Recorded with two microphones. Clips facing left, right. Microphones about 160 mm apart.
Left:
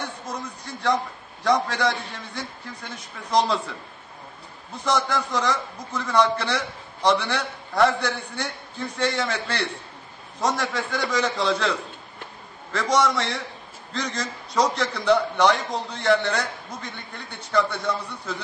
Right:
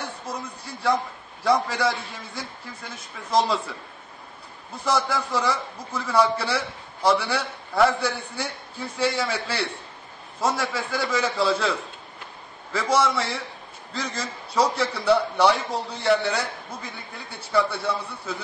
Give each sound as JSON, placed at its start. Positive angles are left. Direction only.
{"t": 0.3, "sound": "a man's voice", "side_deg": -10}
{"t": 4.8, "sound": "a man's voice", "side_deg": -5}